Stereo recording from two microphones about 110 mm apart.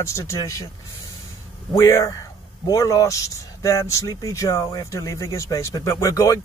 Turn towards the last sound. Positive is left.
turn(degrees=30)  # may be behind; listen again after turning